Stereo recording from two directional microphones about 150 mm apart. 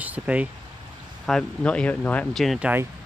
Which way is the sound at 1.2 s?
5° left (ahead or behind).